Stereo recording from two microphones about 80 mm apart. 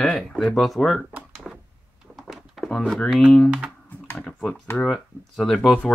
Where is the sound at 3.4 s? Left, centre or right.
Centre.